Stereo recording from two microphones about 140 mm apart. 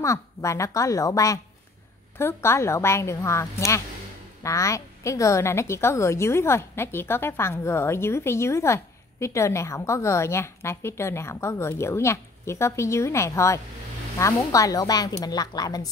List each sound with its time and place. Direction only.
0.0 s a woman's voice: 20° left (ahead or behind)